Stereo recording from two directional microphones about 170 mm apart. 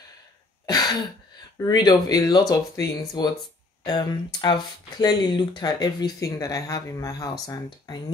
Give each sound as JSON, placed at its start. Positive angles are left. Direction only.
{"t": 0.7, "sound": "throat clearing", "side_deg": 25}
{"t": 1.6, "sound": "speech", "side_deg": 25}